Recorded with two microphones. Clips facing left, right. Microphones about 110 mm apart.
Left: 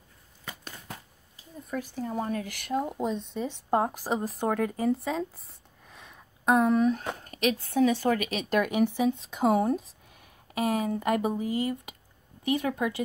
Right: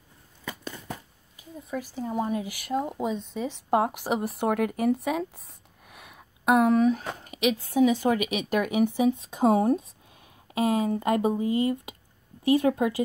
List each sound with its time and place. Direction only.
1.7 s speech: 5° right (ahead or behind)
3.7 s speech: 15° right (ahead or behind)
5.9 s a sound: 10° right (ahead or behind)
7.2 s speech: 10° right (ahead or behind); by 12.9 s 25° right (ahead or behind)